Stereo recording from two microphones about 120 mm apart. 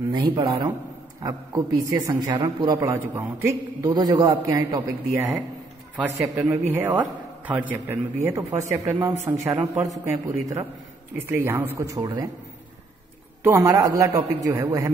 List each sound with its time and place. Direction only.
0.4 s a man's voice: 30° right (ahead or behind)
6.7 s a man's voice: 15° right (ahead or behind)
13.4 s a man's voice: 20° right (ahead or behind)